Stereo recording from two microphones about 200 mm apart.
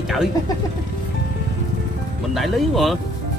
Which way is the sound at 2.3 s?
Centre (ahead or behind).